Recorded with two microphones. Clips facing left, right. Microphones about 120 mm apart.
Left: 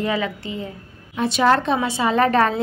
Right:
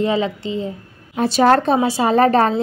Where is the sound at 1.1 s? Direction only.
40° right (ahead or behind).